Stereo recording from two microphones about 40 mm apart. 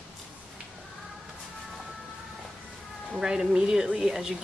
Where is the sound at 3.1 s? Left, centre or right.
Centre.